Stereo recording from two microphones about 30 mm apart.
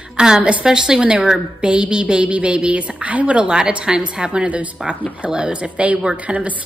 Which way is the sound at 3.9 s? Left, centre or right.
Right.